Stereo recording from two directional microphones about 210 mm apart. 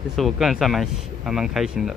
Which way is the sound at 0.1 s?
Centre (ahead or behind).